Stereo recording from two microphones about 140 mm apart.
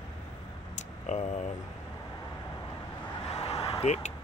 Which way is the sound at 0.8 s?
55° left (ahead or behind).